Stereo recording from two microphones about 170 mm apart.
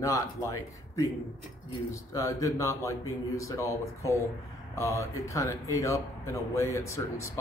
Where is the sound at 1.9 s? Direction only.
20° left (ahead or behind).